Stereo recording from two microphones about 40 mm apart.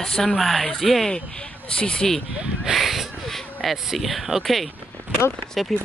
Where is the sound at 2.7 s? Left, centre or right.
Centre.